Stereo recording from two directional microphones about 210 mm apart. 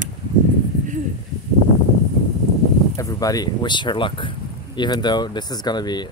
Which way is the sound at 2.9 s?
15° left (ahead or behind).